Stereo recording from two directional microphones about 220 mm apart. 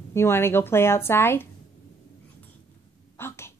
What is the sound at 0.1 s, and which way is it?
A woman's voice, 10° left (ahead or behind).